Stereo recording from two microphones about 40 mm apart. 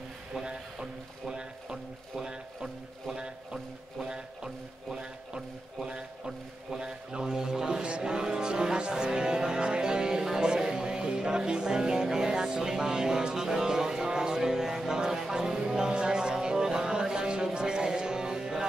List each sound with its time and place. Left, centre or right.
0.5 s speech: centre
5.9 s speech: right
7.8 s music: right